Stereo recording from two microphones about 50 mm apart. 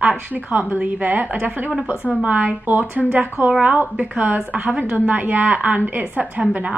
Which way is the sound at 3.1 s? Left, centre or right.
Right.